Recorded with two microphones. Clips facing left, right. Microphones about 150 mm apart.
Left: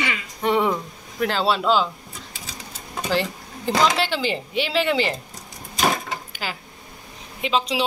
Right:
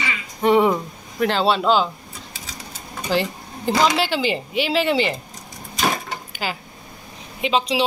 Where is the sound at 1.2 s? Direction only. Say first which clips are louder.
Right 3 dB; centre (ahead or behind).